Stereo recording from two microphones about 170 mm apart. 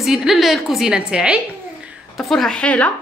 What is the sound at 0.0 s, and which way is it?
Speech, centre (ahead or behind).